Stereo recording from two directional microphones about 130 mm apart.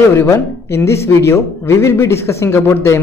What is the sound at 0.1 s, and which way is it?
A man's voice, 20° left (ahead or behind).